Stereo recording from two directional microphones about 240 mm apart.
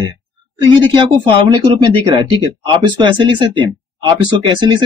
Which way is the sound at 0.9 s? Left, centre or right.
Centre.